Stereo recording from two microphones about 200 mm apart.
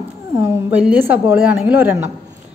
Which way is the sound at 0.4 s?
10° right (ahead or behind).